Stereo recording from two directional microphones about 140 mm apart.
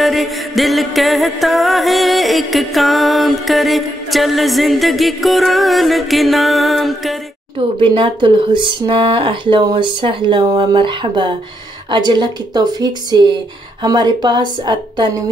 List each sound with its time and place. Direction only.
0.0 s music: centre (ahead or behind)
7.8 s speech: 40° right (ahead or behind)